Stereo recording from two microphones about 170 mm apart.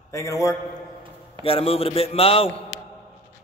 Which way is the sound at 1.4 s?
35° left (ahead or behind).